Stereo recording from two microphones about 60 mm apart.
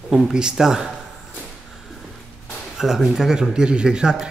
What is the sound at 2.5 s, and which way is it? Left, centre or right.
Speech, centre.